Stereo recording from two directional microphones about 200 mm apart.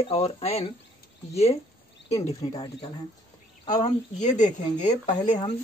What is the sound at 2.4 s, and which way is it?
Speech, 30° left (ahead or behind).